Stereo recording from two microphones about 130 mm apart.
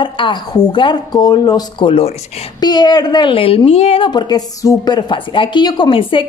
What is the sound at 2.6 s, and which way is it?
Speech, 30° left (ahead or behind).